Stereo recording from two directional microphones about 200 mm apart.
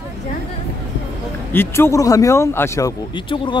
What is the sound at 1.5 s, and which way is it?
Speech, 10° left (ahead or behind).